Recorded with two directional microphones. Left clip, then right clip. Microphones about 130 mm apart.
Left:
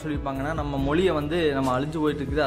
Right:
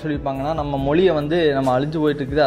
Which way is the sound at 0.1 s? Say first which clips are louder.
Right 6 dB; 25° right (ahead or behind).